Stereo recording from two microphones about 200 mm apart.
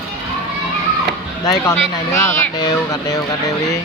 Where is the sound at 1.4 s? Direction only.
15° left (ahead or behind).